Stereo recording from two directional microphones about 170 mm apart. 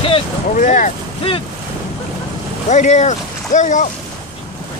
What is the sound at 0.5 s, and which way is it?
Speech, 45° left (ahead or behind).